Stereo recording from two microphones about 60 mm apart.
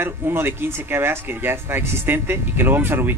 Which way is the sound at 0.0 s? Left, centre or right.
Right.